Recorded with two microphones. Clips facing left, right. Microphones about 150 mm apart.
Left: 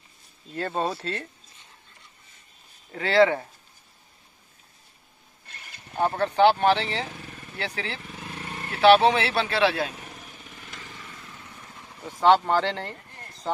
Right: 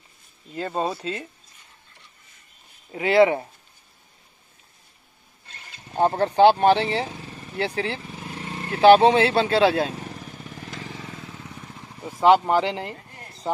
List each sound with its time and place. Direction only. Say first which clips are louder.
0.5 s speech: right 1 dB; 5° right (ahead or behind)
2.9 s speech: right 3 dB; 15° right (ahead or behind)
5.9 s speech: right 4 dB; 30° right (ahead or behind)
10.5 s motorcycle: right 8 dB; 40° right (ahead or behind)
12.0 s speech: right 2 dB; 10° right (ahead or behind)